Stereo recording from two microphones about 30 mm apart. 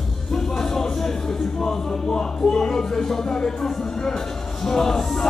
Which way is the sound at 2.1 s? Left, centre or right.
Left.